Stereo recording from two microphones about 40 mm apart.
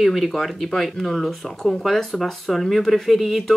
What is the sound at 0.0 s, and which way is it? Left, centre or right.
Speech, centre.